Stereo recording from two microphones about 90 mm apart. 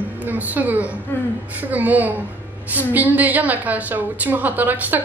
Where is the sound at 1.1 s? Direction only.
25° left (ahead or behind).